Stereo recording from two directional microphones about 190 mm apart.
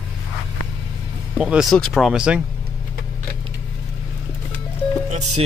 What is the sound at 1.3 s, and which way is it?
Speech, 5° right (ahead or behind).